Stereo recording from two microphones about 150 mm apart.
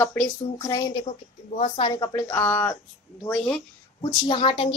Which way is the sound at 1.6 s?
35° left (ahead or behind).